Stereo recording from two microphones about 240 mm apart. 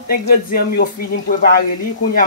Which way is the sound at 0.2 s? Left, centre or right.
Left.